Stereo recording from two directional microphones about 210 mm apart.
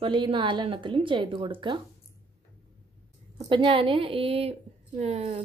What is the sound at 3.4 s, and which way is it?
A woman's voice, 25° right (ahead or behind).